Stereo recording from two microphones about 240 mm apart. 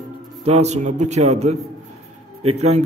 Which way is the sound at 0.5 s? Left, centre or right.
Right.